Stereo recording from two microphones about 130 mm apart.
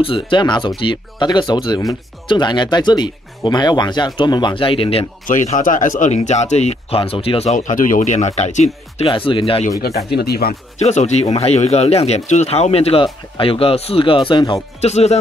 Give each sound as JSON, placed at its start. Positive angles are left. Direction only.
{"t": 0.0, "sound": "speech", "side_deg": 40}
{"t": 5.2, "sound": "speech", "side_deg": 80}
{"t": 7.5, "sound": "speech", "side_deg": 80}
{"t": 10.8, "sound": "speech", "side_deg": 60}
{"t": 14.8, "sound": "speech", "side_deg": 55}